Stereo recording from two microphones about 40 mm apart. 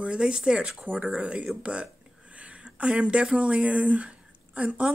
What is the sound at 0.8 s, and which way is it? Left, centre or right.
Speech, right.